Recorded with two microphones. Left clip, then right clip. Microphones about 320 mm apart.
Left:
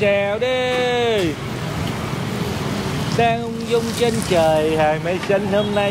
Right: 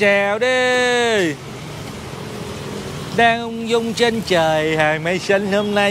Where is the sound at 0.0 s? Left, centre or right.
Right.